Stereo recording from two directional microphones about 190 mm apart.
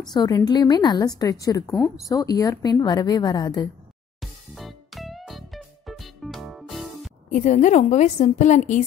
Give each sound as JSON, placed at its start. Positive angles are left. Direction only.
{"t": 0.0, "sound": "a woman's voice", "side_deg": 20}
{"t": 4.2, "sound": "music", "side_deg": 0}
{"t": 7.2, "sound": "a woman's voice", "side_deg": 40}